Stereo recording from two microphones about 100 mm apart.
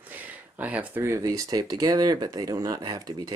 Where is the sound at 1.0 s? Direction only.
30° right (ahead or behind).